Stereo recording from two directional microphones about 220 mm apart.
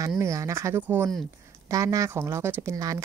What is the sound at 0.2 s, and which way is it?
A woman's voice, 15° right (ahead or behind).